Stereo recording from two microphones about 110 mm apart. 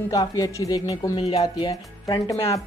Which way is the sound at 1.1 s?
60° left (ahead or behind).